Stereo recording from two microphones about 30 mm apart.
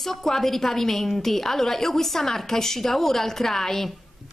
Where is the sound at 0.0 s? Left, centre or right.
Centre.